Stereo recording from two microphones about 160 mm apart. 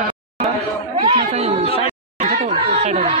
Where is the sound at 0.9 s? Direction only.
35° right (ahead or behind).